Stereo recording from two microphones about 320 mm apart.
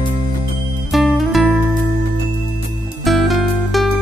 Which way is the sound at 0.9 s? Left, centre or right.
Centre.